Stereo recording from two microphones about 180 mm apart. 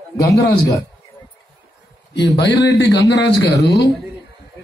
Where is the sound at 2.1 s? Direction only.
75° left (ahead or behind).